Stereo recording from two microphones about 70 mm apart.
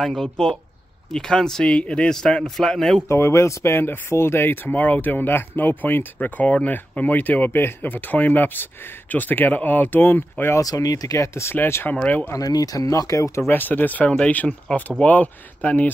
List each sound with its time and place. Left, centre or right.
0.0 s a man's voice: centre
3.1 s speech: left
10.6 s speech: left
11.5 s speech: left
11.9 s speech: centre
12.4 s speech: left
13.5 s speech: left